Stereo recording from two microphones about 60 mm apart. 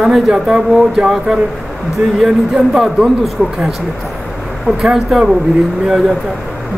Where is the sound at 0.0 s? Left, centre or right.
Centre.